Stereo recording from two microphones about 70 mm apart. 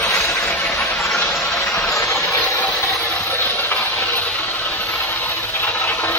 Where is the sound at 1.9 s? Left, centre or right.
Left.